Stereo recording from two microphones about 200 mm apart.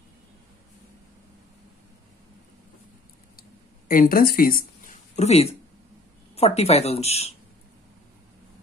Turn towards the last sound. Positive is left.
turn(degrees=30)  # may be behind; listen again after turning